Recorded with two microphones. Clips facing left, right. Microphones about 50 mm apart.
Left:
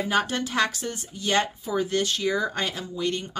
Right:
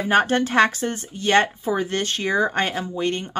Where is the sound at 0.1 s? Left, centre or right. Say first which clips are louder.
Right 9 dB; right.